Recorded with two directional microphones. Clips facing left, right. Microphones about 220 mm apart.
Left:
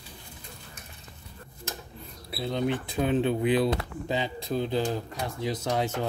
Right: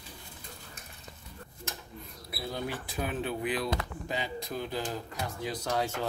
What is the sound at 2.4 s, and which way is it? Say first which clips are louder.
Speech: left 8 dB; 25° left (ahead or behind).